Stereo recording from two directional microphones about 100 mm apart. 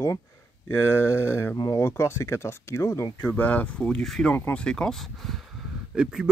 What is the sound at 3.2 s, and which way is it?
Speech, 15° left (ahead or behind).